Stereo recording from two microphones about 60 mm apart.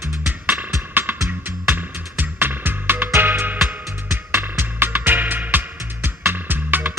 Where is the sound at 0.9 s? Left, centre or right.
Right.